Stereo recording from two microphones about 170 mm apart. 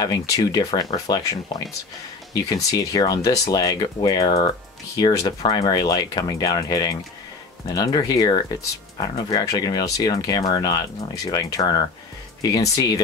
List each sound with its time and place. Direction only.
0.0 s speech: 20° left (ahead or behind)